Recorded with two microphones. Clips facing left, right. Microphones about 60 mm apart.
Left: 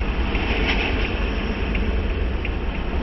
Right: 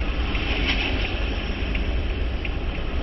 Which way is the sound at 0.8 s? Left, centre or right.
Centre.